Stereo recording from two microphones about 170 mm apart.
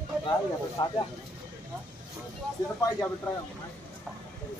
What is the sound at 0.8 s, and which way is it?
Speech, 30° left (ahead or behind).